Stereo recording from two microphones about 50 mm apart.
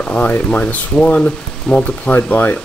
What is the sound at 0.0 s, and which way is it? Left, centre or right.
Speech, left.